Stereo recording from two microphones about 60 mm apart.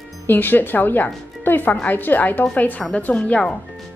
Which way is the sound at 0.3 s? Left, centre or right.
Left.